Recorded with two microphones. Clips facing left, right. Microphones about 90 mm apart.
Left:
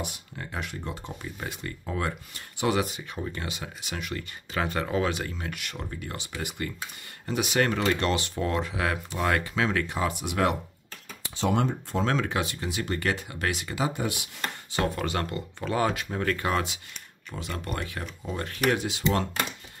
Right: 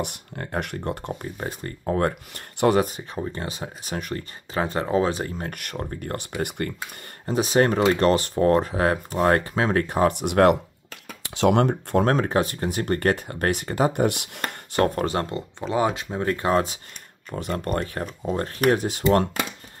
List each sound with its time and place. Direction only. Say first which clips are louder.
0.0 s speech: right 6 dB; 55° right (ahead or behind)
1.4 s speech: right 5 dB; 40° right (ahead or behind)
7.2 s speech: right 6 dB; 35° right (ahead or behind); by 12.1 s 60° right (ahead or behind)
12.1 s speech: right 6 dB; 45° right (ahead or behind)